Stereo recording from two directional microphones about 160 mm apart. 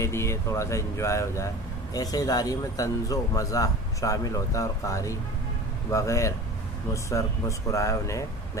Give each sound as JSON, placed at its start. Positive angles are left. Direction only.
{"t": 0.0, "sound": "a man's voice", "side_deg": 15}